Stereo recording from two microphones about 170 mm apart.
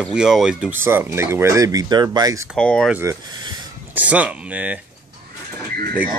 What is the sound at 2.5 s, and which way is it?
Speech, 5° left (ahead or behind).